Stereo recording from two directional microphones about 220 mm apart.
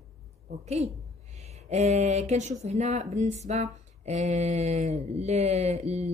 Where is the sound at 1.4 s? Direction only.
30° right (ahead or behind).